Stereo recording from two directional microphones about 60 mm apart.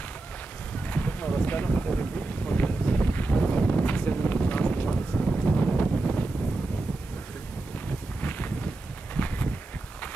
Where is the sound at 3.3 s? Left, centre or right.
Centre.